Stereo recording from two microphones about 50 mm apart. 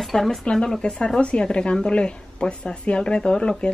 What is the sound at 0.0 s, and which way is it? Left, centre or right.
A woman's voice, centre.